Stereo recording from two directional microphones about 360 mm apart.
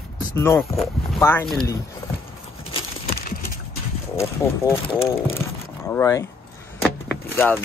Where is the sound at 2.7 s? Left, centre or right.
Left.